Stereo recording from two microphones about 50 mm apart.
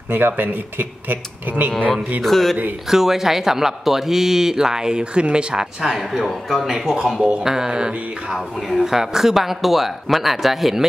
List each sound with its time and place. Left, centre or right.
0.1 s speech: right
2.2 s speech: centre
2.9 s speech: centre